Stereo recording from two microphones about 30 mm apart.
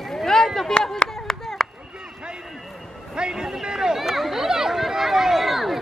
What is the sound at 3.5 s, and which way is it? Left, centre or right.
Speech, centre.